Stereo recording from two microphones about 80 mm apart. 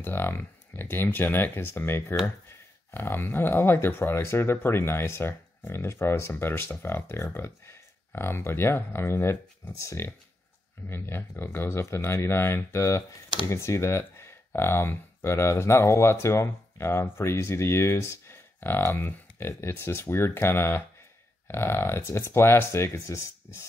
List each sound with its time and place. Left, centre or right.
0.0 s speech: left